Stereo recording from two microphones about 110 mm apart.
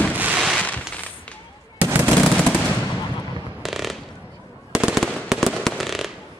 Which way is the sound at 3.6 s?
Centre (ahead or behind).